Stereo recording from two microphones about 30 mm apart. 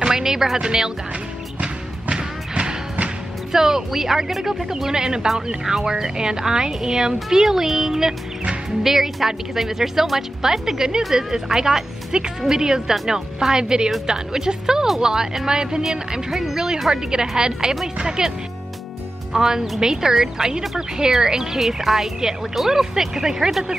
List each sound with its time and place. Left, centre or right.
0.0 s music: centre
0.6 s a woman's voice: right
1.6 s music: right
3.5 s a woman's voice: centre
16.3 s speech: centre
16.5 s a woman's voice: right
19.3 s a woman's voice: centre
21.5 s speech: centre